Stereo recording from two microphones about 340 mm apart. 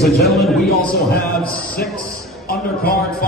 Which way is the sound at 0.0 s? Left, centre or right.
Centre.